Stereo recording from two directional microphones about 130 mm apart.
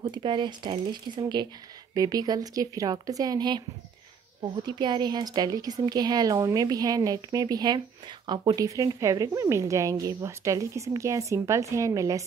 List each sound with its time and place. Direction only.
0.0 s a woman's voice: 35° right (ahead or behind)